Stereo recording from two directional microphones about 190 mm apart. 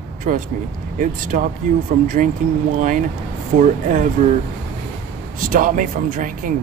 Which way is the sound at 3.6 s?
45° right (ahead or behind).